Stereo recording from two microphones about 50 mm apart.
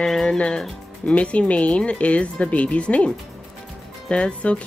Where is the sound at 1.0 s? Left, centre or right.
Left.